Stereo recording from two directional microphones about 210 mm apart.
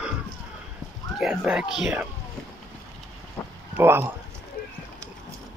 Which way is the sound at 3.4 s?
10° left (ahead or behind).